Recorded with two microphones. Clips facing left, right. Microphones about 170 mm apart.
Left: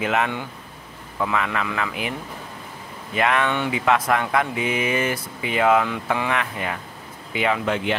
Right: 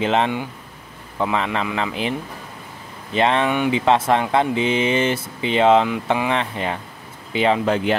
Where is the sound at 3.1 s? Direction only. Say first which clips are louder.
Right 3 dB; 30° right (ahead or behind).